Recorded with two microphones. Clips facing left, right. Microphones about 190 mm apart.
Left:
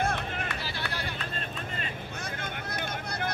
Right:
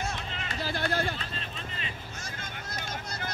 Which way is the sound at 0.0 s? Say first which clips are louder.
Left 5 dB; 55° left (ahead or behind).